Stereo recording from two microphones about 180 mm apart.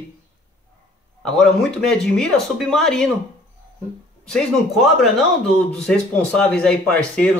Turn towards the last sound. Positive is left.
turn(degrees=5)  # may be behind; listen again after turning